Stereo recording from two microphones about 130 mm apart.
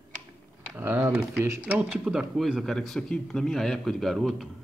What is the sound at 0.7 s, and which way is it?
Speech, 15° right (ahead or behind).